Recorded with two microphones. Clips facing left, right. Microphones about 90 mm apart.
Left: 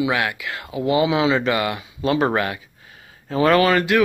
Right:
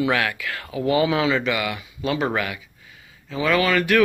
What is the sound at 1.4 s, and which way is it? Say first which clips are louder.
Speech: left 3 dB; 30° left (ahead or behind).